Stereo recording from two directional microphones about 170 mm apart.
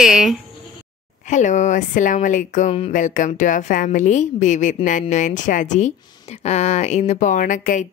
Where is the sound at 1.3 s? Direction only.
45° left (ahead or behind).